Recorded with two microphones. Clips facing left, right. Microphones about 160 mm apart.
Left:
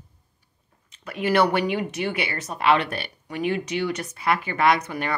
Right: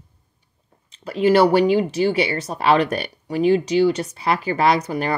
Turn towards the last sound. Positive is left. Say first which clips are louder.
# right 3 dB
turn(degrees=-35)  # may be behind; listen again after turning